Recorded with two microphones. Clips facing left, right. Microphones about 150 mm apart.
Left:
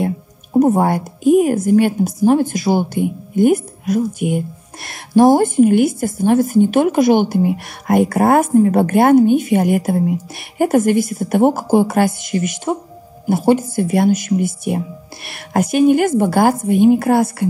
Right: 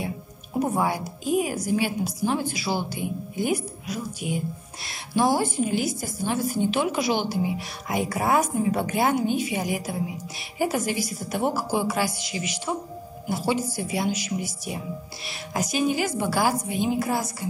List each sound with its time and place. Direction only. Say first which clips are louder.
0.5 s a woman's voice: left 11 dB; 45° left (ahead or behind)